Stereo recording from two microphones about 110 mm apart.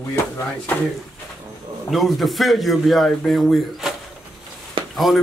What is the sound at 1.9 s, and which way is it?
Speech, centre (ahead or behind).